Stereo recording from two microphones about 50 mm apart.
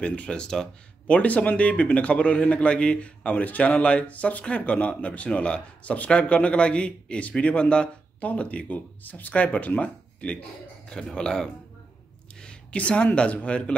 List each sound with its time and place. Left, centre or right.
0.0 s a man's voice: left
1.0 s a man's voice: left